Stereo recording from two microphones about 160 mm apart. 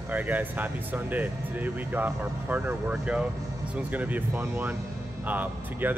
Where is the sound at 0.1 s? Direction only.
10° right (ahead or behind).